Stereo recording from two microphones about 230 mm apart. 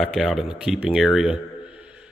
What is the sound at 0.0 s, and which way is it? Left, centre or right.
A man's voice, centre.